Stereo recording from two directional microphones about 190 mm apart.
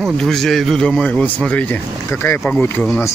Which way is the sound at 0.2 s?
Centre (ahead or behind).